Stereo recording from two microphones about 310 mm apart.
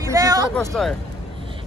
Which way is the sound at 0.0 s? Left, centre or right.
Centre.